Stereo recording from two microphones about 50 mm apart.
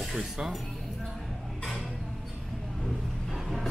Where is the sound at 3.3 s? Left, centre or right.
Centre.